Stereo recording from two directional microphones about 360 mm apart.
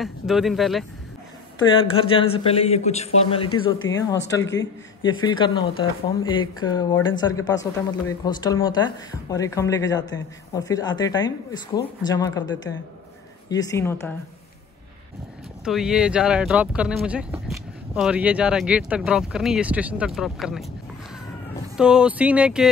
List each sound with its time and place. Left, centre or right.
0.0 s speech: centre
1.6 s speech: centre
4.1 s speech: left
5.0 s speech: centre
15.6 s speech: centre
21.7 s speech: centre